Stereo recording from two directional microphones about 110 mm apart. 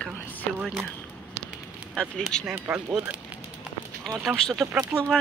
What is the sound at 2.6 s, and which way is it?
Speech, 15° right (ahead or behind).